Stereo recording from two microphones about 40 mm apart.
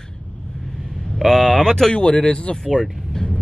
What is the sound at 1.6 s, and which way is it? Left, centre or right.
Speech, centre.